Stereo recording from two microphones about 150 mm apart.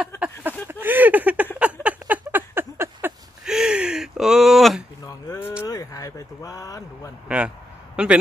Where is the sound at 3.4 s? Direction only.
5° right (ahead or behind).